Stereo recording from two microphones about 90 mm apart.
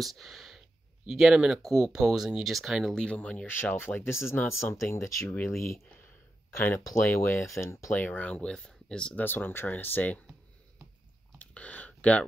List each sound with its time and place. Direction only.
0.0 s speech: centre (ahead or behind)
2.9 s speech: 10° left (ahead or behind); by 8.0 s 30° left (ahead or behind)
8.0 s speech: 20° left (ahead or behind)
9.2 s speech: 25° left (ahead or behind)
11.3 s a sound: 15° left (ahead or behind)